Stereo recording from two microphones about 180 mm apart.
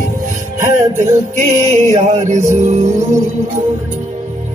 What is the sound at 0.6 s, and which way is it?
Music, 40° right (ahead or behind).